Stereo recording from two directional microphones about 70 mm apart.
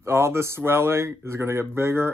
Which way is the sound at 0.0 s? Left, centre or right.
Right.